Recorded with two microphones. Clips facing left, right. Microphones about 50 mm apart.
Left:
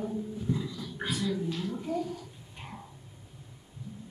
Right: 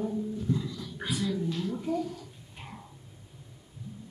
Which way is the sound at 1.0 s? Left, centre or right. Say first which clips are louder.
Right 1 dB; centre.